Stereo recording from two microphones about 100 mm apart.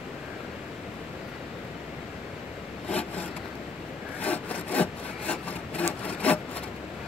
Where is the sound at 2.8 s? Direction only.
15° left (ahead or behind).